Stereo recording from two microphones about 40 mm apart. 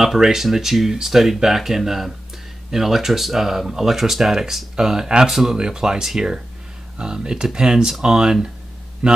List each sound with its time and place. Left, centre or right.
0.0 s speech: centre
5.3 s a man's voice: centre